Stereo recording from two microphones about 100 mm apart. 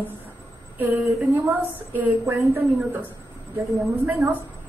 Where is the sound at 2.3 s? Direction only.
20° right (ahead or behind).